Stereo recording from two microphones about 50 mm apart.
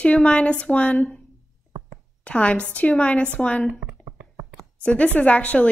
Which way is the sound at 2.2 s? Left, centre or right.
Left.